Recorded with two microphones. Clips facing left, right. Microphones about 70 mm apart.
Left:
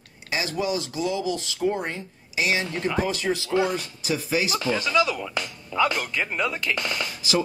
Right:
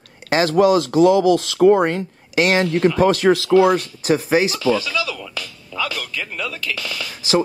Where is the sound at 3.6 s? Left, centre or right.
Right.